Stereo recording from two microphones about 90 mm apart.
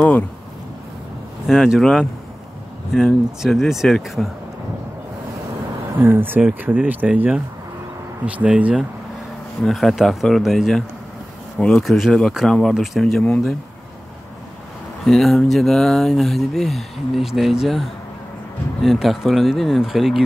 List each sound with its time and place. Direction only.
1.5 s speech: 5° right (ahead or behind)
3.4 s speech: centre (ahead or behind)
5.9 s speech: 25° right (ahead or behind)
9.6 s speech: 5° left (ahead or behind)
11.5 s speech: 10° left (ahead or behind)
13.2 s speech: 10° left (ahead or behind)
15.0 s speech: 5° left (ahead or behind)